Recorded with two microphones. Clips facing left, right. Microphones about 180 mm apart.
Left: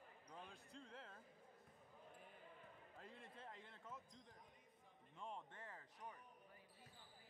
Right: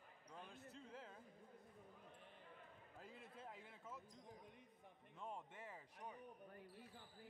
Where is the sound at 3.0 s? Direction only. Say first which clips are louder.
Right 2 dB; 5° right (ahead or behind).